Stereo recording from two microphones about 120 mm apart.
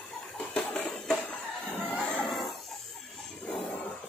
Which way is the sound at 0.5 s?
10° left (ahead or behind).